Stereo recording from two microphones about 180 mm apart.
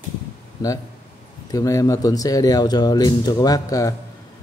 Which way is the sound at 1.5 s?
20° left (ahead or behind).